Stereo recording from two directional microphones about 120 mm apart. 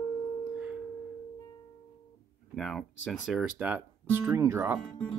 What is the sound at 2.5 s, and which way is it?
Speech, centre (ahead or behind).